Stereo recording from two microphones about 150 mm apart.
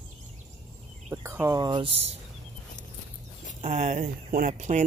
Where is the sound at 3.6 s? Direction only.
60° right (ahead or behind).